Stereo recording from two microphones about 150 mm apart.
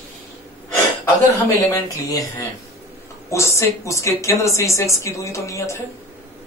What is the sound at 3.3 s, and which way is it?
Speech, 20° left (ahead or behind).